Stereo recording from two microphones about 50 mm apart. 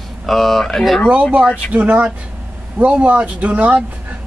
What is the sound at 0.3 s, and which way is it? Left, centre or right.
Speech, centre.